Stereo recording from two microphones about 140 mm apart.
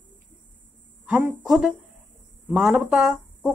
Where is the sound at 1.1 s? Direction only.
15° right (ahead or behind).